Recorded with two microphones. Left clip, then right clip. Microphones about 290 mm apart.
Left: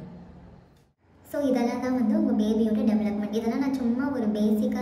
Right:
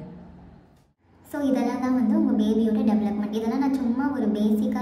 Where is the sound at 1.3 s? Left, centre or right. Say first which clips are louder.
Even; centre.